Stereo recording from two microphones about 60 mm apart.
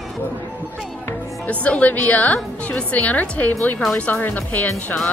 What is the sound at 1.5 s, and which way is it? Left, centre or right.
A woman's voice, left.